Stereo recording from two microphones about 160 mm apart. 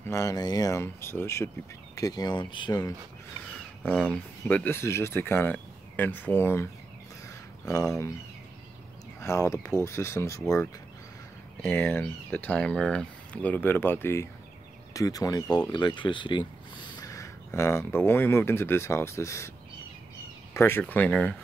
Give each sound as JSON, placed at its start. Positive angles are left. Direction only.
{"t": 0.0, "sound": "speech", "side_deg": 20}
{"t": 3.8, "sound": "speech", "side_deg": 5}
{"t": 9.2, "sound": "speech", "side_deg": 20}
{"t": 11.6, "sound": "speech", "side_deg": 10}
{"t": 20.5, "sound": "speech", "side_deg": 15}